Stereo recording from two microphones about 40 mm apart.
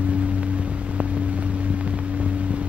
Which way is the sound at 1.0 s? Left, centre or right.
Right.